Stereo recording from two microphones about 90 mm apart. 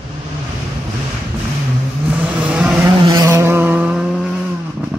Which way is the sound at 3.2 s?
30° right (ahead or behind).